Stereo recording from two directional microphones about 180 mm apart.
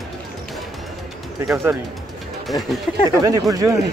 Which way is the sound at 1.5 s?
15° right (ahead or behind).